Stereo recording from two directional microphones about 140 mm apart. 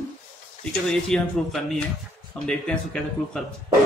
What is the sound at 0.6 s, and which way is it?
Speech, 5° left (ahead or behind).